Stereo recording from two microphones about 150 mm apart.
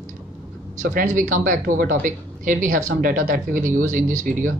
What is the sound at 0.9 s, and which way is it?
Speech, 60° right (ahead or behind).